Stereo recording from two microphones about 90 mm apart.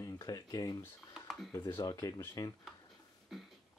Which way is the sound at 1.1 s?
Centre (ahead or behind).